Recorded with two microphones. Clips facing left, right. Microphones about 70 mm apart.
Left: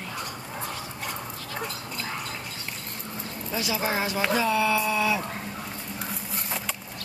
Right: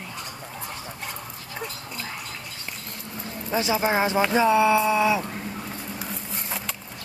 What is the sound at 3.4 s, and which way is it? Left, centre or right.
Speech, right.